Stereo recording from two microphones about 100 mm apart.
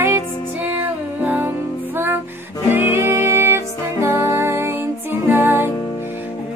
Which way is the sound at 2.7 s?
20° right (ahead or behind).